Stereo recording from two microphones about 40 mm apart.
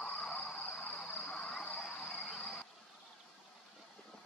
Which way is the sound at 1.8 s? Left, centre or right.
Centre.